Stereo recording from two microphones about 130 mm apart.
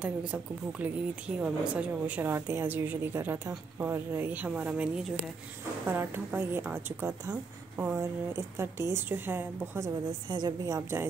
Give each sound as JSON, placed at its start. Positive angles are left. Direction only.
{"t": 0.0, "sound": "a woman's voice", "side_deg": -10}
{"t": 2.3, "sound": "a woman's voice", "side_deg": -20}
{"t": 10.3, "sound": "a woman's voice", "side_deg": -30}